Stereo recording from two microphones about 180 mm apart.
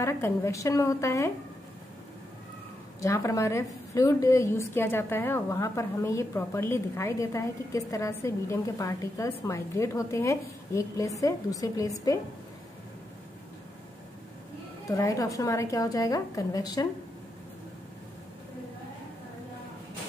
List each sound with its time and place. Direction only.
0.0 s a woman's voice: 15° left (ahead or behind)
3.0 s a woman's voice: 15° left (ahead or behind)
14.9 s a woman's voice: 20° left (ahead or behind)